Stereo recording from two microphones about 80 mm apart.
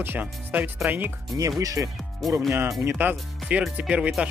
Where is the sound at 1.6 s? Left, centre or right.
Right.